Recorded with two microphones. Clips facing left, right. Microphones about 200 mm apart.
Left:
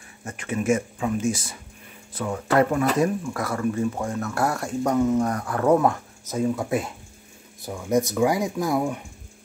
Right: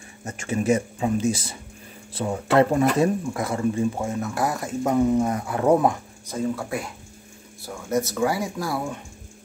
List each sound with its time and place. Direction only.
0.4 s speech: 35° right (ahead or behind)
3.9 s speech: 10° right (ahead or behind)
4.9 s speech: 15° right (ahead or behind)
6.3 s speech: 20° left (ahead or behind)